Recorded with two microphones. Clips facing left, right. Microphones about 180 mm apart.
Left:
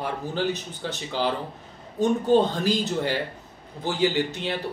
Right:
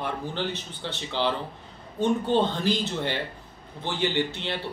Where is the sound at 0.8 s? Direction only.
40° left (ahead or behind).